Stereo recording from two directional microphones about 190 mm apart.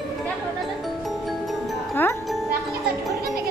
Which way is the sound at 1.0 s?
Centre (ahead or behind).